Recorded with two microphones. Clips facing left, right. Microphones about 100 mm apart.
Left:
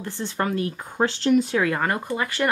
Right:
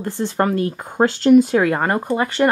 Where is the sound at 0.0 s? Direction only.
45° right (ahead or behind).